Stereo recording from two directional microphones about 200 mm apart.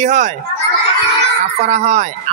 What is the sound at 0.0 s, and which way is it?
Speech, 35° right (ahead or behind).